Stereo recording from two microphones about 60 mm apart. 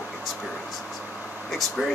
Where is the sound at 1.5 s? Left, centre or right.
Centre.